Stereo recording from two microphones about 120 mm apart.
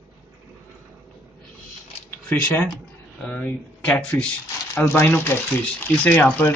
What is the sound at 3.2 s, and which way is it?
Speech, 10° left (ahead or behind).